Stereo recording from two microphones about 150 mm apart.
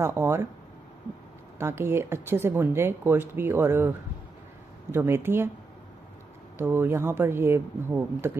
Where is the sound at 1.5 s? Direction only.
15° right (ahead or behind).